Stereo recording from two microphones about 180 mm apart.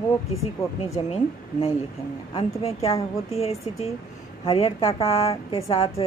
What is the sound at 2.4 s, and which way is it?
A woman's voice, 35° left (ahead or behind).